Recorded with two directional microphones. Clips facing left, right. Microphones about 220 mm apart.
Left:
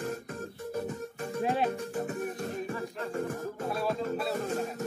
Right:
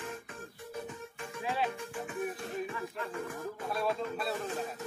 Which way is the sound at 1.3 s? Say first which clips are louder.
Left 5 dB; 40° left (ahead or behind).